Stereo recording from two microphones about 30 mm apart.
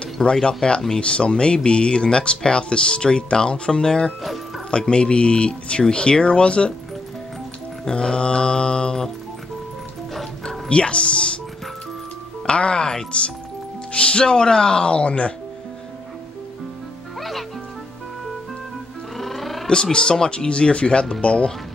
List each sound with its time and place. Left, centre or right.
0.0 s speech: left
7.9 s speech: left
10.7 s speech: left
12.4 s speech: left
15.0 s speech: left
17.2 s music: centre
19.1 s music: centre
19.7 s speech: left